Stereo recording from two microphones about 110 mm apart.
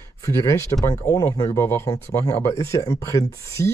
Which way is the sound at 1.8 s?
35° left (ahead or behind).